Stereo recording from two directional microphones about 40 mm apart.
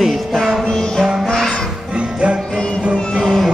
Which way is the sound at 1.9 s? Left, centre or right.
Right.